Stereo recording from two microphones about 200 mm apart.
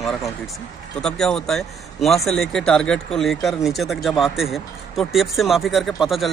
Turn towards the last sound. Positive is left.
turn(degrees=0)  # may be behind; listen again after turning